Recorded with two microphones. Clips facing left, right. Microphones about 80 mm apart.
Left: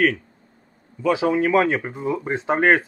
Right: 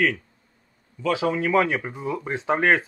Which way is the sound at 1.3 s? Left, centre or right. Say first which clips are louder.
Left 2 dB; left.